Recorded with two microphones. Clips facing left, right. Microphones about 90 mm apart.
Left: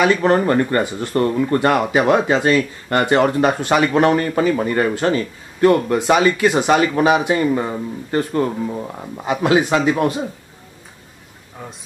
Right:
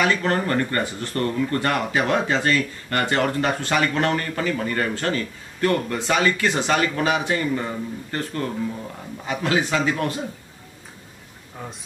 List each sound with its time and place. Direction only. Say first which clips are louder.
0.0 s speech: left 6 dB; 15° left (ahead or behind)
8.6 s speech: left 5 dB; 35° left (ahead or behind)
9.2 s speech: left 7 dB; 20° left (ahead or behind)
11.6 s speech: left 1 dB; centre (ahead or behind)